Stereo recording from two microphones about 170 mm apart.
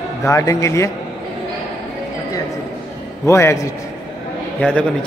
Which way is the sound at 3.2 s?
15° left (ahead or behind).